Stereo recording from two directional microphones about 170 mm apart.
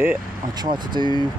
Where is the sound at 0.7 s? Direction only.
25° right (ahead or behind).